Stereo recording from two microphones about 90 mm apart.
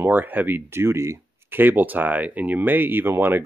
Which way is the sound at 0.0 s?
20° right (ahead or behind).